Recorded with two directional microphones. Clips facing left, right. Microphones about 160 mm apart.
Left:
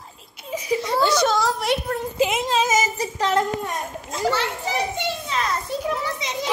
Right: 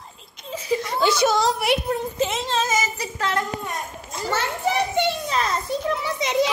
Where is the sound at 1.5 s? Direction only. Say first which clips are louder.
Right 1 dB; 15° right (ahead or behind).